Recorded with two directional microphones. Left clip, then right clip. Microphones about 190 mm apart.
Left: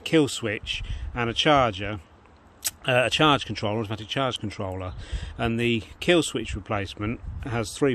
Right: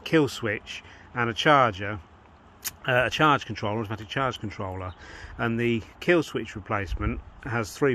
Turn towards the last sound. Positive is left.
turn(degrees=20)  # may be behind; listen again after turning